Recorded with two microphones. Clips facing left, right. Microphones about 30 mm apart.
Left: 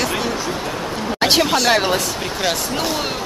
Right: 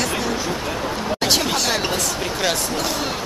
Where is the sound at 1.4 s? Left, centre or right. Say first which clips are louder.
Left 5 dB; centre.